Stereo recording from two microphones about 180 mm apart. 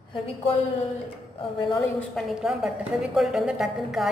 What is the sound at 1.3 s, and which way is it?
Speech, 30° left (ahead or behind).